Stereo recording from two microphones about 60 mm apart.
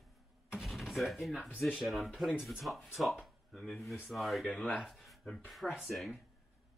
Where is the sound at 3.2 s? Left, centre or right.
Centre.